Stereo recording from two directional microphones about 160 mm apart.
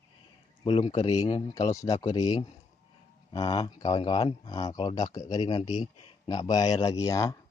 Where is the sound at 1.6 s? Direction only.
20° left (ahead or behind).